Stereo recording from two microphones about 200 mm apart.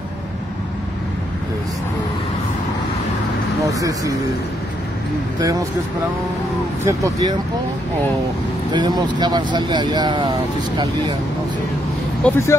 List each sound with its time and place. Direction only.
6.8 s speech: 15° right (ahead or behind)
8.7 s speech: 20° right (ahead or behind)
12.2 s speech: 15° left (ahead or behind)